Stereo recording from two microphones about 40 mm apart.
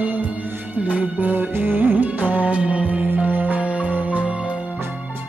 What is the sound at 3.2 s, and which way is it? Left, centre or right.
Music, right.